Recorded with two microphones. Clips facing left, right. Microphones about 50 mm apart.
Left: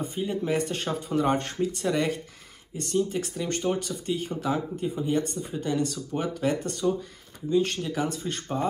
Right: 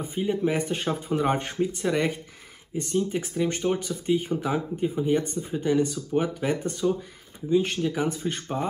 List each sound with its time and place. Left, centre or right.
0.0 s speech: centre